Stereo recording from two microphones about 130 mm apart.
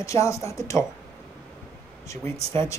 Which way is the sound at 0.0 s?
25° left (ahead or behind).